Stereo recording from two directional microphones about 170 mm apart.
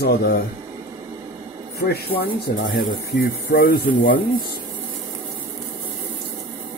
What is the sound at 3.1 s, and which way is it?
Speech, 60° left (ahead or behind).